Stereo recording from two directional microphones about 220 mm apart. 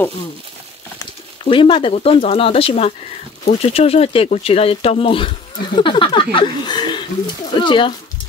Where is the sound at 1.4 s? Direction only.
20° left (ahead or behind).